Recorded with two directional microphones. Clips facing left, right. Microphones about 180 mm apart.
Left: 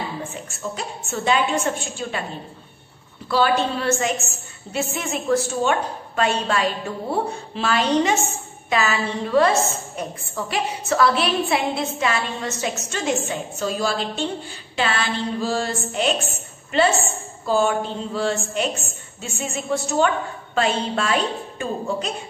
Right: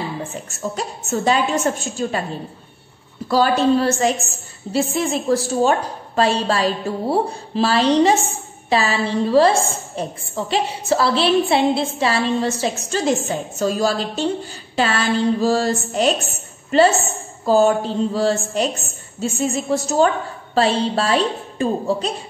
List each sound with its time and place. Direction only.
0.5 s a woman's voice: 40° right (ahead or behind)
3.3 s a woman's voice: 40° right (ahead or behind)